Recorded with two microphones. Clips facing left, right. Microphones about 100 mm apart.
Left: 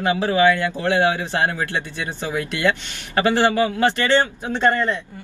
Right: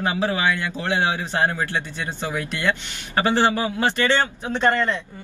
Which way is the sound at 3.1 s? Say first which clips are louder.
Left 2 dB; 20° right (ahead or behind).